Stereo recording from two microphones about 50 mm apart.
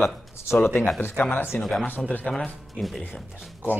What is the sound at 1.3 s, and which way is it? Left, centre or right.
Speech, left.